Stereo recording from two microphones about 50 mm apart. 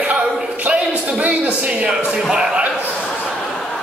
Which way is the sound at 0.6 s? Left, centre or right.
Right.